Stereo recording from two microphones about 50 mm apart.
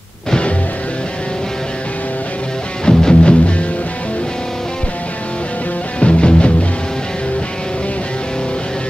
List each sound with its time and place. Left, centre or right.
0.3 s music: left
2.8 s music: centre
5.9 s music: left